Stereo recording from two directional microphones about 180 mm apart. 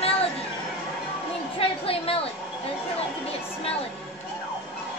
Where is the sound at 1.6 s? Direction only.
30° left (ahead or behind).